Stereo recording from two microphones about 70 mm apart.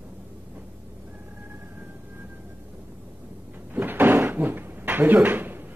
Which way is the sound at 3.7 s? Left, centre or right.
Right.